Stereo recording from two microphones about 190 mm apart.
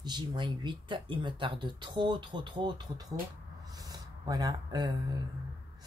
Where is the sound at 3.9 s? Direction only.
20° right (ahead or behind).